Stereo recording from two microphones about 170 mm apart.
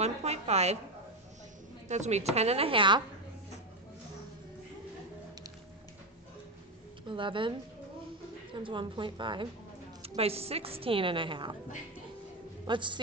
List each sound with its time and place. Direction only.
0.0 s a woman's voice: 40° right (ahead or behind)
1.9 s a woman's voice: 40° right (ahead or behind)
7.1 s a woman's voice: 30° right (ahead or behind)
8.5 s a woman's voice: 30° right (ahead or behind)
12.6 s a woman's voice: 30° right (ahead or behind)